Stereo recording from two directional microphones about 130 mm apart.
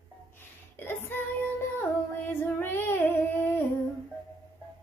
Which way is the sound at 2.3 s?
15° left (ahead or behind).